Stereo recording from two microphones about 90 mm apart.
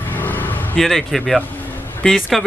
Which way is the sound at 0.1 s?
20° left (ahead or behind).